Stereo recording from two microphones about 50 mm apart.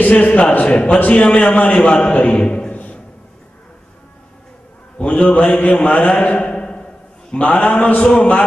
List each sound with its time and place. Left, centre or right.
0.0 s a man's voice: left
4.9 s a man's voice: left
6.4 s mantra: left
8.1 s a man's voice: left